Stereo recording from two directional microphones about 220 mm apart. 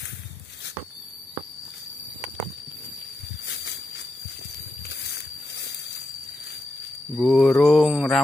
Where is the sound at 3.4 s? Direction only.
50° left (ahead or behind).